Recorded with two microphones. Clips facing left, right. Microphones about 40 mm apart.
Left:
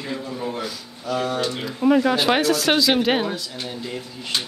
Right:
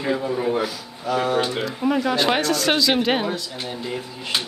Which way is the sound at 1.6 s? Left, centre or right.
Centre.